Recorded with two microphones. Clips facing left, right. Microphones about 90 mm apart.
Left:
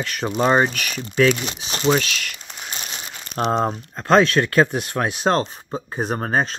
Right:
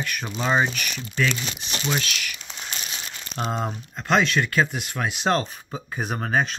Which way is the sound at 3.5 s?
35° left (ahead or behind).